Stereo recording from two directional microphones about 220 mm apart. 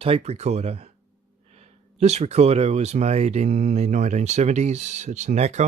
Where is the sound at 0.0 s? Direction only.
25° right (ahead or behind).